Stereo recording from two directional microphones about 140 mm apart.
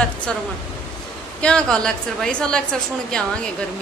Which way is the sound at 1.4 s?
5° left (ahead or behind).